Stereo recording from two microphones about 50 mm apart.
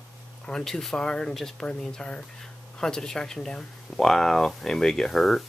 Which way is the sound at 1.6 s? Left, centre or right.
Centre.